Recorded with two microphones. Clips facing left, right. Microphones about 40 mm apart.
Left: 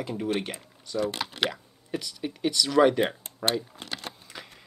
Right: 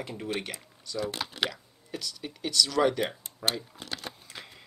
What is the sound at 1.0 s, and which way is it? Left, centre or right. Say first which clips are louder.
Speech: left 2 dB; left.